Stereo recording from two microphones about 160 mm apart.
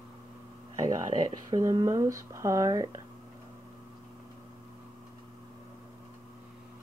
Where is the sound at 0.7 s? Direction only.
20° right (ahead or behind).